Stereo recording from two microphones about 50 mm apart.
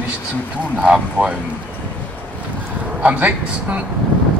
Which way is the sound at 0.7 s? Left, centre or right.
Right.